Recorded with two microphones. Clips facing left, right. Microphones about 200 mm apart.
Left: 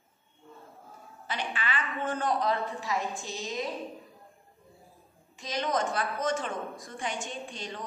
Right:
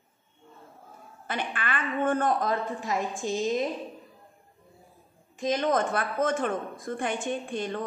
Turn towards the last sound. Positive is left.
turn(degrees=-55)  # may be behind; listen again after turning